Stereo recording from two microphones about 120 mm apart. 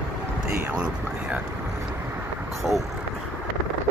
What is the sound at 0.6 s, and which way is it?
Speech, 10° right (ahead or behind).